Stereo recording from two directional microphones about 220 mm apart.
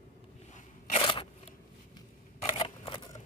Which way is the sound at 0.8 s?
25° left (ahead or behind).